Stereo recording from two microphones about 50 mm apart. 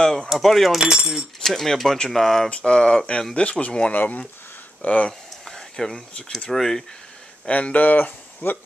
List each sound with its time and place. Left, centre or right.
0.0 s speech: centre
0.4 s speech: centre
0.7 s speech: centre
1.4 s speech: centre
2.5 s speech: centre
3.9 s speech: left
5.5 s a sound: centre
6.5 s speech: centre
7.4 s speech: left